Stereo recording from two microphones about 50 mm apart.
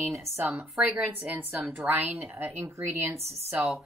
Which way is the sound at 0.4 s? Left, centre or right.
Right.